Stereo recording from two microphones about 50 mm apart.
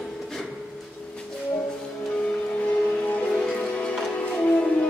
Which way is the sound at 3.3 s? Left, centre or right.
Centre.